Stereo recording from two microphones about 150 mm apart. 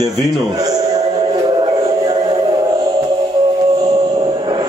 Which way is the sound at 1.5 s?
30° right (ahead or behind).